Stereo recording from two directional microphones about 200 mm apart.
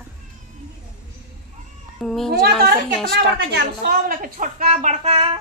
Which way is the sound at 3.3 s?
55° right (ahead or behind).